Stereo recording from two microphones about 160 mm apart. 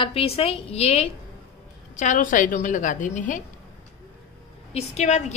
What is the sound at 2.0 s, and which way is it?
A woman's voice, 55° left (ahead or behind).